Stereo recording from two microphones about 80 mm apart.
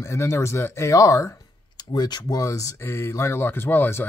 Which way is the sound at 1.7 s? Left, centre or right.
Left.